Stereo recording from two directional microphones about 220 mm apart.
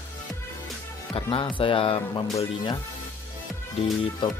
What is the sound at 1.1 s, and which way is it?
Speech, 25° left (ahead or behind).